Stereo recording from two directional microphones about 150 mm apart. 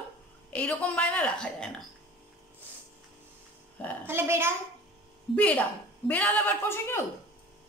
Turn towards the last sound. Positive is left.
turn(degrees=15)  # may be behind; listen again after turning